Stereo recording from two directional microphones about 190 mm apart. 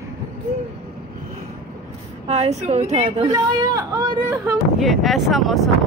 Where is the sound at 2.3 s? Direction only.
35° right (ahead or behind).